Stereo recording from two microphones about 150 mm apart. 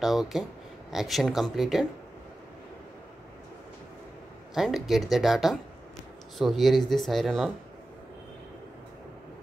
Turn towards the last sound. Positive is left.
turn(degrees=0)  # may be behind; listen again after turning